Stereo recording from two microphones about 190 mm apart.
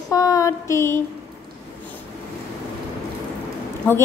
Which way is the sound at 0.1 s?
20° left (ahead or behind).